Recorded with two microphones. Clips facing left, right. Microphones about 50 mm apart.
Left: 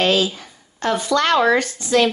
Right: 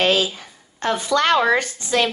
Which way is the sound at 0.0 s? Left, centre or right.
Right.